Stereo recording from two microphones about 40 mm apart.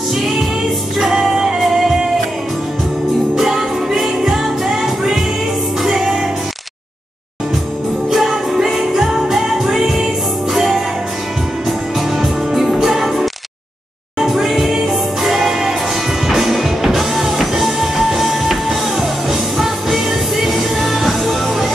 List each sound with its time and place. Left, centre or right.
0.9 s music: centre
3.3 s music: centre
8.1 s music: centre
12.2 s music: centre